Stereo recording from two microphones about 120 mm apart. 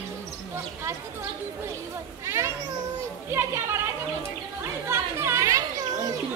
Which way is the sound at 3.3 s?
20° right (ahead or behind).